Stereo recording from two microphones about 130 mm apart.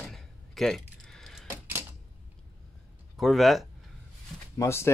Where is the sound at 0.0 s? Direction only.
Centre (ahead or behind).